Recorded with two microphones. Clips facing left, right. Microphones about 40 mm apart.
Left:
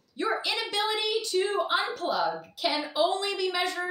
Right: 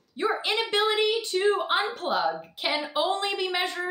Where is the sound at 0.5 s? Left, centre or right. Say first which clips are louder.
Right 5 dB; right.